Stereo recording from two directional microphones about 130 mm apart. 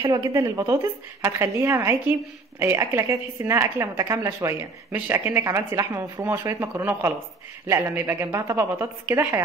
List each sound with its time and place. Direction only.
0.0 s speech: 30° right (ahead or behind)